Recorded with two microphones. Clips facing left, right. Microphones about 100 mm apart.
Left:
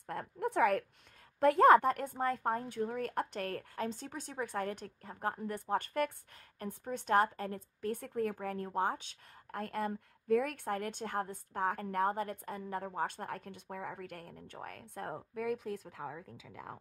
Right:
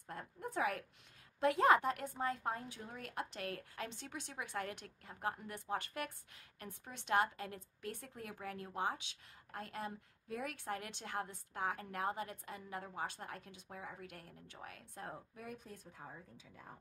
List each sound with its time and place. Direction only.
0.0 s a woman's voice: 60° left (ahead or behind)
15.4 s speech: 90° left